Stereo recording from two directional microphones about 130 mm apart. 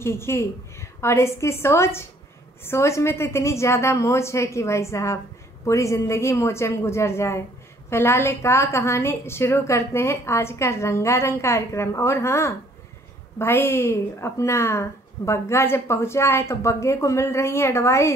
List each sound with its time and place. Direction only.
0.0 s a woman's voice: 20° left (ahead or behind)